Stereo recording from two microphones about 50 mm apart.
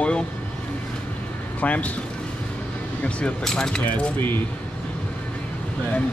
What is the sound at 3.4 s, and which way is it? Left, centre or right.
Speech, centre.